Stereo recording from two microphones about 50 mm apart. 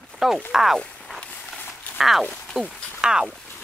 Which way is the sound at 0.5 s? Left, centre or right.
Centre.